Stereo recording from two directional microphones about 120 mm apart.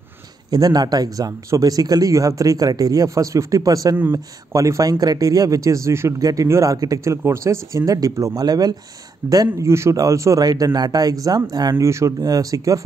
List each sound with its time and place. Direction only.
0.5 s speech: 30° right (ahead or behind)